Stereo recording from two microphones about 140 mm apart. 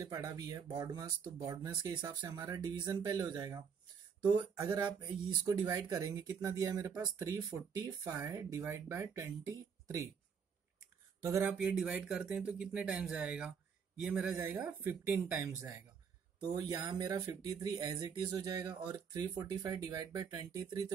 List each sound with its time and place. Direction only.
0.0 s speech: 25° right (ahead or behind)
11.2 s speech: 20° right (ahead or behind)
11.5 s speech: 5° right (ahead or behind); by 20.8 s 25° right (ahead or behind)